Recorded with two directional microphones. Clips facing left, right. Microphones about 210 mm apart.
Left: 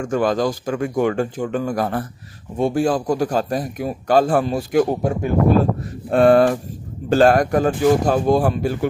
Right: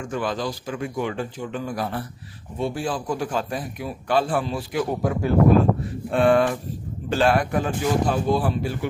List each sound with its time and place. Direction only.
0.0 s speech: 45° left (ahead or behind)